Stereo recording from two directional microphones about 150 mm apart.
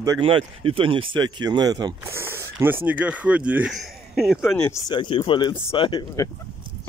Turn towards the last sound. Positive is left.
turn(degrees=35)  # may be behind; listen again after turning